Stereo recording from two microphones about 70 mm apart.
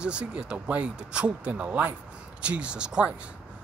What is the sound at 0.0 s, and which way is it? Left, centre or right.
Speech, centre.